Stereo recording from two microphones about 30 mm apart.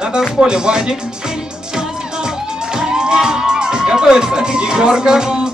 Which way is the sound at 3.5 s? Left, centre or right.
Right.